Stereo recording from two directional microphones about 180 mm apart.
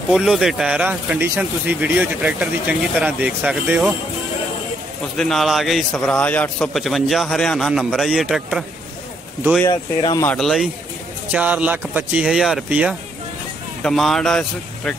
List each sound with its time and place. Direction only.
0.1 s speech: centre (ahead or behind)
5.1 s a man's voice: 5° left (ahead or behind)
9.7 s speech: 20° left (ahead or behind)
10.2 s a man's voice: 5° left (ahead or behind)